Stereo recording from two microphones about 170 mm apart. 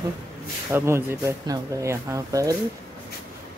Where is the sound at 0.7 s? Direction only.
15° right (ahead or behind).